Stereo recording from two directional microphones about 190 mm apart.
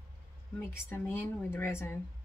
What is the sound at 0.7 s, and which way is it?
Speech, 10° left (ahead or behind).